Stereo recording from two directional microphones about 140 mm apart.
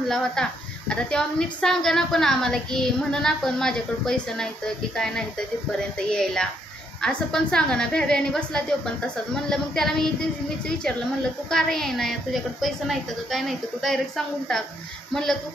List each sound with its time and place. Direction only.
0.1 s a woman's voice: 5° left (ahead or behind)
11.5 s a woman's voice: 5° left (ahead or behind)